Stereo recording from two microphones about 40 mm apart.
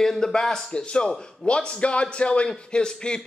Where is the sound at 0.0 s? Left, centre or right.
Centre.